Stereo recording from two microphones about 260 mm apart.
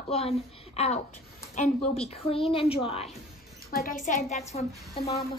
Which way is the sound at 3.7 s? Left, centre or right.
Left.